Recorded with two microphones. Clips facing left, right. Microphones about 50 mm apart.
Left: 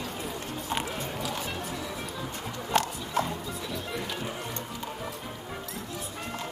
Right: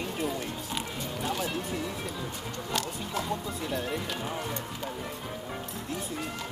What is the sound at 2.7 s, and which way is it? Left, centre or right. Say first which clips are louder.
Speech: left 6 dB; left.